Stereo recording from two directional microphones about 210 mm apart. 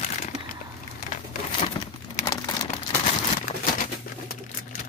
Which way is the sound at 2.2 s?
15° left (ahead or behind).